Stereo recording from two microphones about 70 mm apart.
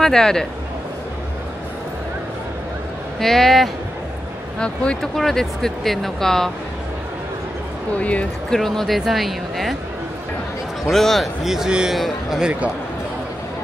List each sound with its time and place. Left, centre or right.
0.0 s speech: centre
3.2 s speech: centre
8.0 s speech: centre
8.5 s speech: centre
10.9 s a man's voice: centre